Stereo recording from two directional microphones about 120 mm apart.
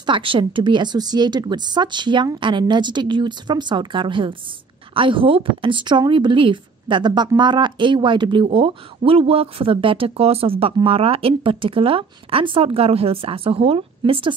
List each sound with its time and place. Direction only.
0.0 s a woman's voice: 45° right (ahead or behind)